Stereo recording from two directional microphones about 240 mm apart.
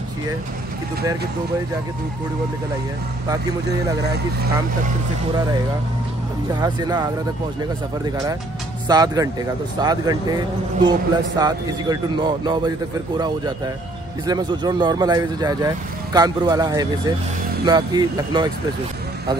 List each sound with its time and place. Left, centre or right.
6.6 s speech: centre
8.8 s speech: centre
14.2 s speech: centre